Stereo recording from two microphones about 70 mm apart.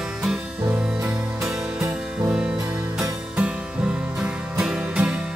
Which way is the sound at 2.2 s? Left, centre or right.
Centre.